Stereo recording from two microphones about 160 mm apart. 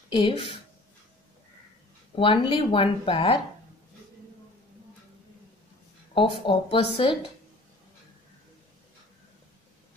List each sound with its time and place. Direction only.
0.1 s speech: 35° left (ahead or behind)
2.1 s speech: 30° left (ahead or behind)
6.1 s speech: 35° left (ahead or behind)